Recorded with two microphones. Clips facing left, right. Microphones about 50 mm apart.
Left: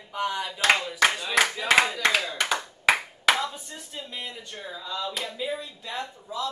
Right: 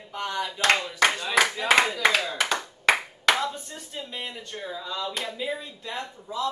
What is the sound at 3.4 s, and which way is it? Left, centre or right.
Speech, centre.